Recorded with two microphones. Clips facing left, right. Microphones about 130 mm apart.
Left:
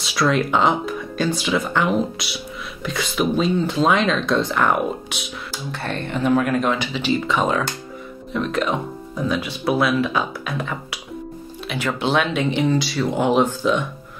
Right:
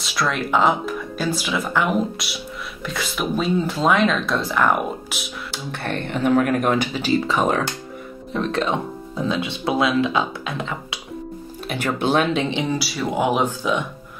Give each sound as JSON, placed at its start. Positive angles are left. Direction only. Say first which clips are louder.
{"t": 0.0, "sound": "speech", "louder": "left 4 dB", "side_deg": 0}
{"t": 5.5, "sound": "speech", "louder": "right 1 dB", "side_deg": -60}
{"t": 11.7, "sound": "speech", "louder": "right 1 dB", "side_deg": -45}
{"t": 12.4, "sound": "speech", "louder": "left 1 dB", "side_deg": -25}
{"t": 12.7, "sound": "speech", "louder": "left 2 dB", "side_deg": -5}